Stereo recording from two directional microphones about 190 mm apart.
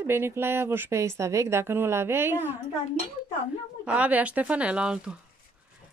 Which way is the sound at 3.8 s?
5° right (ahead or behind).